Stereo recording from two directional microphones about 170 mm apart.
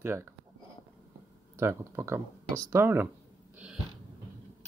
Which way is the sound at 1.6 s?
15° right (ahead or behind).